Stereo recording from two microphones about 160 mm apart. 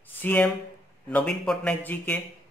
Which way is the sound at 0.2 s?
10° left (ahead or behind).